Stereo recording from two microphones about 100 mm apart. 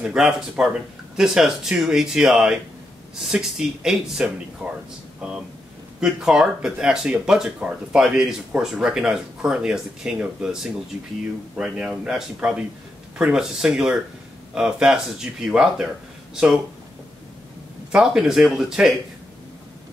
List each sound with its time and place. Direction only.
0.0 s speech: 5° right (ahead or behind)
4.6 s speech: 15° right (ahead or behind)
5.9 s speech: 5° right (ahead or behind)
17.9 s speech: 5° right (ahead or behind)